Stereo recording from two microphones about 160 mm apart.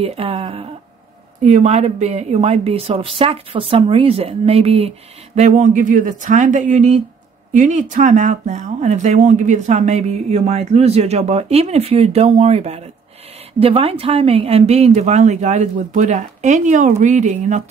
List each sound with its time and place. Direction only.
0.0 s speech: 35° right (ahead or behind)